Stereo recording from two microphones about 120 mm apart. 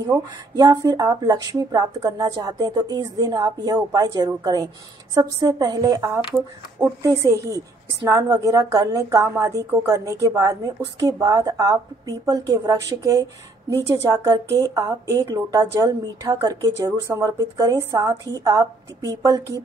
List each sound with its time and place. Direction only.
0.6 s a woman's voice: 30° right (ahead or behind)